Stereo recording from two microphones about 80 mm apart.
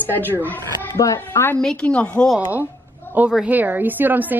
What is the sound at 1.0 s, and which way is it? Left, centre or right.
Speech, left.